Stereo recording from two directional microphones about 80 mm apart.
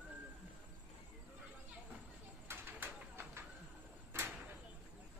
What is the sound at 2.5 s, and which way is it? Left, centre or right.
Bird, right.